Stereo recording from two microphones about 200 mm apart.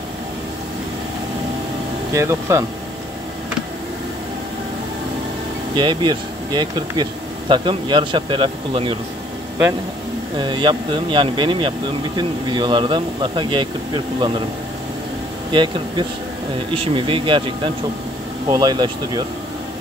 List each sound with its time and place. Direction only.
2.1 s speech: 15° right (ahead or behind)
5.8 s speech: 25° right (ahead or behind)
10.3 s speech: 20° right (ahead or behind)
15.5 s speech: 25° right (ahead or behind)